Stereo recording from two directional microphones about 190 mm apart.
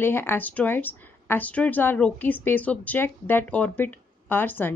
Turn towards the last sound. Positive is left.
turn(degrees=10)  # may be behind; listen again after turning